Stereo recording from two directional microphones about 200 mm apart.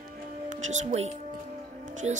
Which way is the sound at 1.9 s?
35° right (ahead or behind).